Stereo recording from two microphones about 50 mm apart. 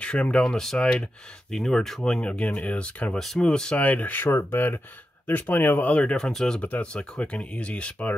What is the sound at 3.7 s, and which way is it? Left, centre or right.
Speech, left.